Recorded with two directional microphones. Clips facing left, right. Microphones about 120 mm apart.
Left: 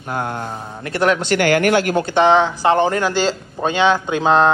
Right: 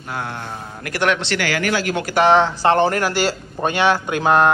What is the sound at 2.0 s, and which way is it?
Speech, 20° left (ahead or behind).